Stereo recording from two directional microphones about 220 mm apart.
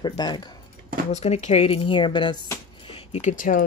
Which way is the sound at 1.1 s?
30° left (ahead or behind).